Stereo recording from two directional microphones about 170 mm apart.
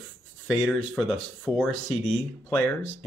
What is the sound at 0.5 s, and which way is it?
Speech, 10° left (ahead or behind).